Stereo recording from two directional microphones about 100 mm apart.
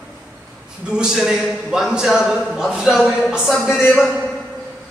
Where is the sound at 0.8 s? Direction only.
10° right (ahead or behind).